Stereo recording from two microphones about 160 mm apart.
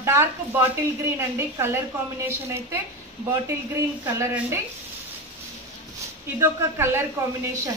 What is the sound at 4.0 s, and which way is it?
Speech, 20° right (ahead or behind).